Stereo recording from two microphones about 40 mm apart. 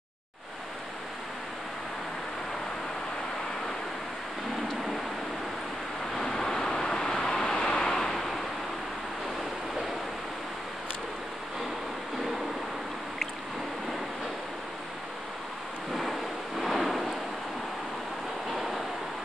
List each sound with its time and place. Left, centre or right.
6.1 s vehicle: centre
15.9 s a sound: centre
18.5 s vehicle: centre